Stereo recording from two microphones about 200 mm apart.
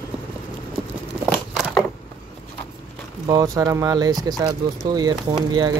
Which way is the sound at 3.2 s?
15° right (ahead or behind).